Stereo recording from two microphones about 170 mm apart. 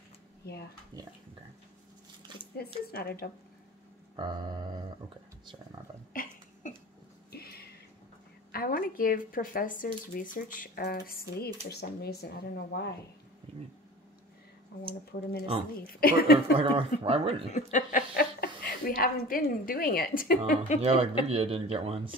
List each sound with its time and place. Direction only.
2.5 s a woman's voice: 65° left (ahead or behind)
4.2 s music: 25° right (ahead or behind)
6.1 s a sound: 55° left (ahead or behind)
7.3 s a sound: 65° left (ahead or behind)
8.5 s a woman's voice: 60° left (ahead or behind)
15.1 s speech: 90° left
16.0 s a woman's voice: 60° left (ahead or behind)
16.5 s speech: 35° right (ahead or behind)
17.5 s a woman's voice: 45° left (ahead or behind)
21.3 s speech: 35° right (ahead or behind)